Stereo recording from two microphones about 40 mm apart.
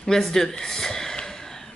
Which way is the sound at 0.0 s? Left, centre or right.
Centre.